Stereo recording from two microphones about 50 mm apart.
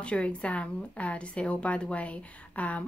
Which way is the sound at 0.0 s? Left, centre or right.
Left.